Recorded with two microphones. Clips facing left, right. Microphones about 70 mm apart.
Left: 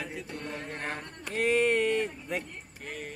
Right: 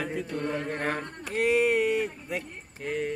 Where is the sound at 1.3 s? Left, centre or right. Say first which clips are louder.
Right 2 dB; centre.